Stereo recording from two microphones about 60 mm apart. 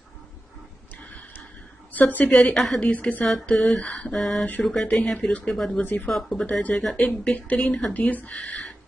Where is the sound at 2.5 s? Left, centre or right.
Centre.